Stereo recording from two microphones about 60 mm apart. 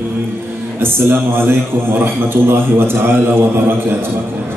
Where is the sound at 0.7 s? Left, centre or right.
Right.